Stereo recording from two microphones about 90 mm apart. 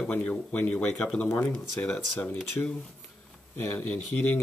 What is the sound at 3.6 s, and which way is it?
Speech, 20° left (ahead or behind).